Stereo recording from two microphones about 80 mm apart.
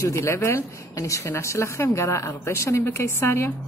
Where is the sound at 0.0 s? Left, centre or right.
Left.